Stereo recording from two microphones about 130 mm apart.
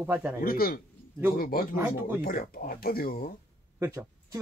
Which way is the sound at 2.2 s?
90° left.